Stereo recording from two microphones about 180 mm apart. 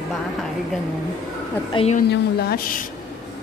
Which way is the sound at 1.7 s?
30° left (ahead or behind).